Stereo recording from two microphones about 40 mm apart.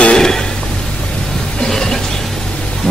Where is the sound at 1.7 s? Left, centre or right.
Centre.